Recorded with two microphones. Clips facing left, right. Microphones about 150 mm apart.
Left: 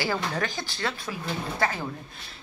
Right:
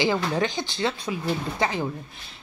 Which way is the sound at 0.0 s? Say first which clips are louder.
Right 5 dB; 20° right (ahead or behind).